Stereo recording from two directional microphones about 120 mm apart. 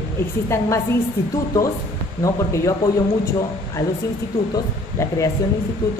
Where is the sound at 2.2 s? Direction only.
25° left (ahead or behind).